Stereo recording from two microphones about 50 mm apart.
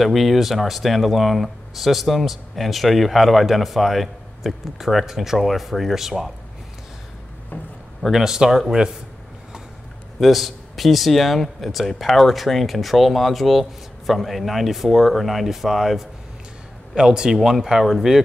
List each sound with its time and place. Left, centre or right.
0.0 s speech: centre
7.5 s a sound: left
8.1 s speech: centre
10.2 s speech: centre